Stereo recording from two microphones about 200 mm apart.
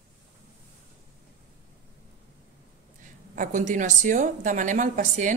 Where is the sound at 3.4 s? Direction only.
40° right (ahead or behind).